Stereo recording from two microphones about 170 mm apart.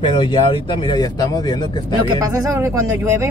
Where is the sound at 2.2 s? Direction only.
20° right (ahead or behind).